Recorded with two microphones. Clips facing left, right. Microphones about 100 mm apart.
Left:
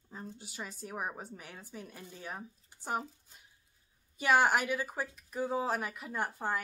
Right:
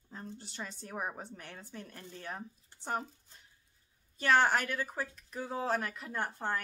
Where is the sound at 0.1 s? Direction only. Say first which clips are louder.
Even; 10° left (ahead or behind).